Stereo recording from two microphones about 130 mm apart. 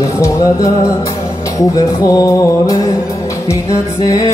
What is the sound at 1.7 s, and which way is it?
Music, 25° left (ahead or behind).